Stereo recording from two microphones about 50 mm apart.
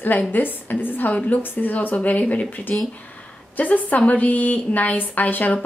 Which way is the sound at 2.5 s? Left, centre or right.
Left.